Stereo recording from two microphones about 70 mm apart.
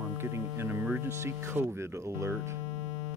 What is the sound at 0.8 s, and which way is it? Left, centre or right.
Speech, right.